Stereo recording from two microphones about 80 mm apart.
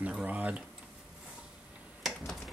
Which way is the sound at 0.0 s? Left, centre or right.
Centre.